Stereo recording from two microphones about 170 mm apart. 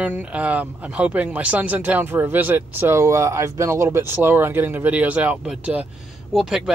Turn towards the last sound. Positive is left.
turn(degrees=-5)  # may be behind; listen again after turning